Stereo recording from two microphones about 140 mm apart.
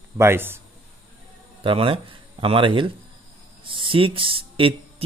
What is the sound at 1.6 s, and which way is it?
Speech, 40° right (ahead or behind).